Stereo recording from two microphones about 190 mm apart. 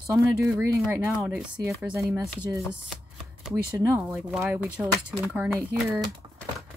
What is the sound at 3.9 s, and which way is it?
Speech, 10° right (ahead or behind).